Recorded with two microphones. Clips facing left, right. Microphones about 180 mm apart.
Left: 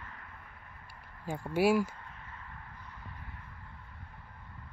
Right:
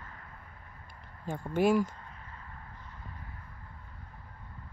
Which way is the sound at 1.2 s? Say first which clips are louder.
Right 1 dB; 10° left (ahead or behind).